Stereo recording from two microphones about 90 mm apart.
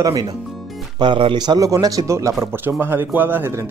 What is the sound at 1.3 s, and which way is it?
A man's voice, 50° right (ahead or behind).